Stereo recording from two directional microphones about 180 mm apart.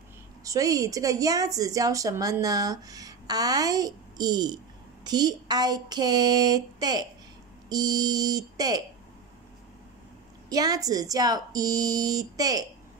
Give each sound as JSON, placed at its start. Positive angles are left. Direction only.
{"t": 0.4, "sound": "a woman's voice", "side_deg": -20}
{"t": 10.5, "sound": "a woman's voice", "side_deg": -20}